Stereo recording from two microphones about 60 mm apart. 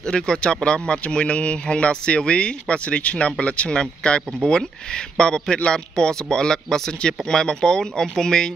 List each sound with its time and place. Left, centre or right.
0.0 s speech: centre